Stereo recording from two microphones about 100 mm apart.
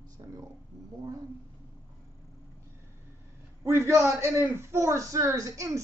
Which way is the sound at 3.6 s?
25° right (ahead or behind).